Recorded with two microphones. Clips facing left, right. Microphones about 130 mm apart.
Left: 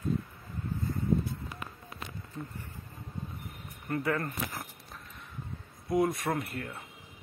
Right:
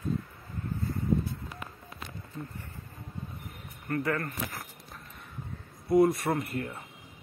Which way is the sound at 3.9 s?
15° left (ahead or behind).